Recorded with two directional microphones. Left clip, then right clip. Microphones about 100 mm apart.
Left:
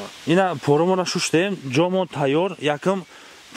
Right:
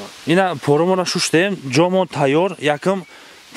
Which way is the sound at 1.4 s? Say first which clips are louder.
Right 4 dB; 35° right (ahead or behind).